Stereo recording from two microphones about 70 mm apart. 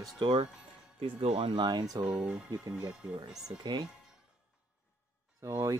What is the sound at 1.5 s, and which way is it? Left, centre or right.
Speech, right.